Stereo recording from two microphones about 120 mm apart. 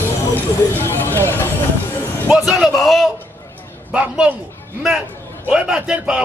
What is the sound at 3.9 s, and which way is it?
A man's voice, 10° right (ahead or behind).